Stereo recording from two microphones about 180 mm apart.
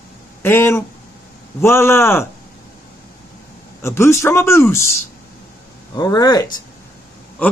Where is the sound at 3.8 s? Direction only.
15° left (ahead or behind).